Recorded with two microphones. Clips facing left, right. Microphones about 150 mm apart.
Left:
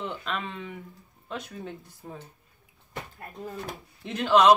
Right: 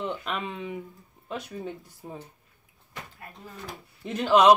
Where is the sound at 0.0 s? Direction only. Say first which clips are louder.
Right 2 dB; 10° right (ahead or behind).